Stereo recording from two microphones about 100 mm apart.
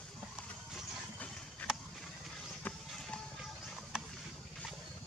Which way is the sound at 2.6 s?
15° left (ahead or behind).